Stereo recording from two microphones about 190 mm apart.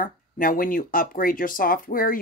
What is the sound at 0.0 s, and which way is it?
Speech, 45° left (ahead or behind).